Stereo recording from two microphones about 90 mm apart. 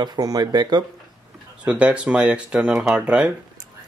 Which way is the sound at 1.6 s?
15° right (ahead or behind).